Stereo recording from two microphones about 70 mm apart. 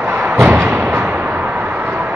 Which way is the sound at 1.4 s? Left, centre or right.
Centre.